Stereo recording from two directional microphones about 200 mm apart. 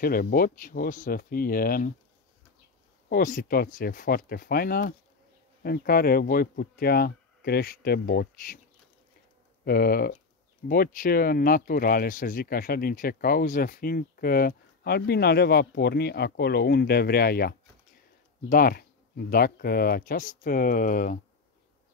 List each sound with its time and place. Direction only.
0.0 s speech: 45° left (ahead or behind)
3.1 s speech: 40° left (ahead or behind)
9.7 s speech: 50° left (ahead or behind)